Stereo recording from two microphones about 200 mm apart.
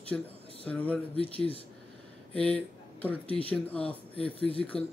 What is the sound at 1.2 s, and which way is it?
Speech, 30° left (ahead or behind).